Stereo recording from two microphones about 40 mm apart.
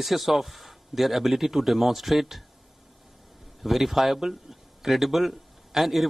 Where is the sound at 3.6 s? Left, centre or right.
Centre.